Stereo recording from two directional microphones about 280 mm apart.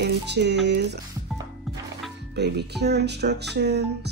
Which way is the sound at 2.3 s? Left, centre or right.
Right.